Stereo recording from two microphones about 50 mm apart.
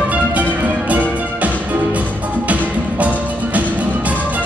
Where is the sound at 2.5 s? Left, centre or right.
Right.